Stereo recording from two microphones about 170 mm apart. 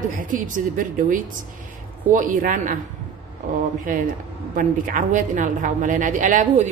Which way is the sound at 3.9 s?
50° right (ahead or behind).